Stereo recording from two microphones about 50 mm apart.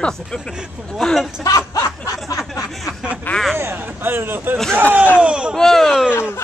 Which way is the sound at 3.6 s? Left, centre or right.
Right.